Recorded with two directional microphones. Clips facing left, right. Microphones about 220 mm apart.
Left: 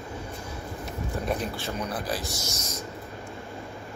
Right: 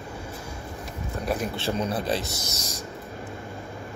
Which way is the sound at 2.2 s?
65° right (ahead or behind).